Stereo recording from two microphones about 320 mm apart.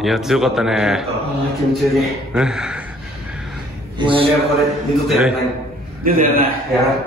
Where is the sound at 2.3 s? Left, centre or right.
Centre.